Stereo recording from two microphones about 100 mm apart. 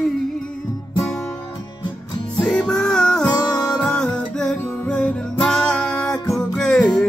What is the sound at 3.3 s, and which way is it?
Music, 40° left (ahead or behind).